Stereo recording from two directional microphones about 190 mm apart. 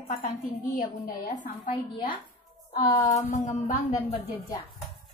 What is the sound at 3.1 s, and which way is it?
A woman's voice, 40° left (ahead or behind).